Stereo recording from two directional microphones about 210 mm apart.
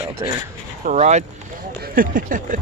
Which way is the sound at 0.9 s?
35° right (ahead or behind).